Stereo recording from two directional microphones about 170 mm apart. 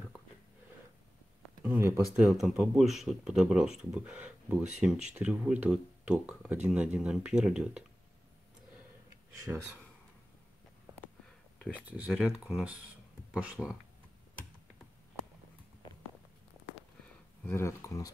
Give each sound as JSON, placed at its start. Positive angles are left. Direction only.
{"t": 1.6, "sound": "a sound", "side_deg": -10}
{"t": 2.1, "sound": "speech", "side_deg": 0}
{"t": 11.8, "sound": "speech", "side_deg": -5}
{"t": 17.5, "sound": "speech", "side_deg": 15}